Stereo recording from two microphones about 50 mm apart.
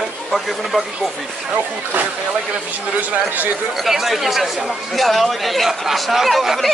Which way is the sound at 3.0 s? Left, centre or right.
Right.